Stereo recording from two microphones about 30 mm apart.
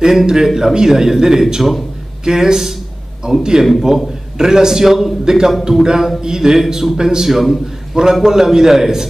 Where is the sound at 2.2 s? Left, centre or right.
Centre.